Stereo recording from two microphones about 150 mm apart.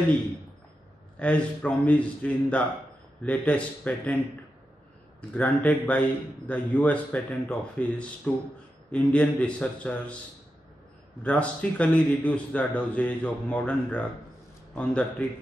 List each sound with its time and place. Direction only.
1.2 s a man's voice: 10° left (ahead or behind)
5.3 s a man's voice: 10° left (ahead or behind)
11.2 s a man's voice: 10° left (ahead or behind)